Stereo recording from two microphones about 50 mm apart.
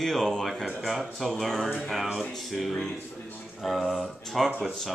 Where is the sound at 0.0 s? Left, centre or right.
Centre.